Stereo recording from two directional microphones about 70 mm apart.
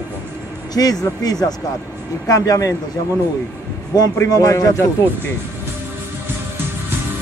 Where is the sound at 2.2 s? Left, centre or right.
Left.